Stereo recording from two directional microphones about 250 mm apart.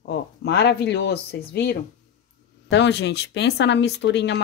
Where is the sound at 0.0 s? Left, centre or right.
Left.